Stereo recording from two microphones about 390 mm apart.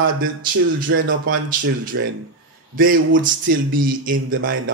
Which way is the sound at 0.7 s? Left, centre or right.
Right.